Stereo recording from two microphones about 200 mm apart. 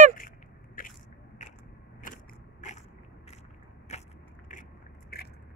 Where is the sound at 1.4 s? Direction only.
35° left (ahead or behind).